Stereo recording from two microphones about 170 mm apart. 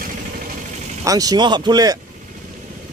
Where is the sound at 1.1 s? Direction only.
20° right (ahead or behind).